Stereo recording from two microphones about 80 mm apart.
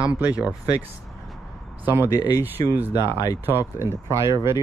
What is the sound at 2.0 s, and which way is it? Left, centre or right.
Speech, left.